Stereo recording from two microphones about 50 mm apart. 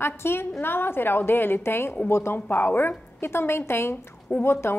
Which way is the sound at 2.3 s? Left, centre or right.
Left.